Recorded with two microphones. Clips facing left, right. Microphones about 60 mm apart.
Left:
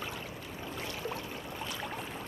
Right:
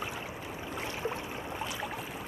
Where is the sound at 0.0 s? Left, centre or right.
Centre.